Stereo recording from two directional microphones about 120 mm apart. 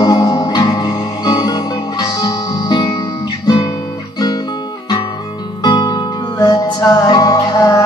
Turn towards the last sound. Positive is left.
turn(degrees=35)  # may be behind; listen again after turning